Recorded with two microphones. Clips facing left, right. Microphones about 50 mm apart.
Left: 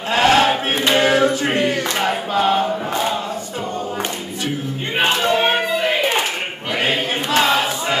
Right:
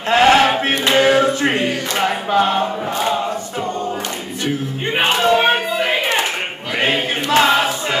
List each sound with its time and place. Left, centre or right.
0.1 s a sound: right
0.5 s a sound: centre
1.1 s music: right
2.0 s choir: centre
4.9 s choir: centre
6.8 s choir: centre